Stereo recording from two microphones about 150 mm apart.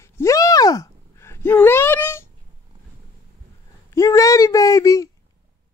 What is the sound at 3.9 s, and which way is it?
Speech, 20° left (ahead or behind).